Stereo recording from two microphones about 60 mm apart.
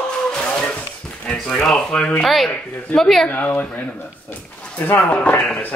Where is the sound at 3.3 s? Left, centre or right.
Left.